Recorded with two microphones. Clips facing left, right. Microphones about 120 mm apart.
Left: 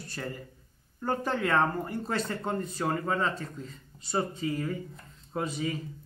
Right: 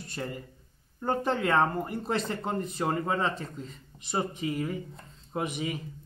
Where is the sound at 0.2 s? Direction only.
15° right (ahead or behind).